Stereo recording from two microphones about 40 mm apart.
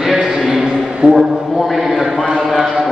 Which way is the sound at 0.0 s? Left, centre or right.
Centre.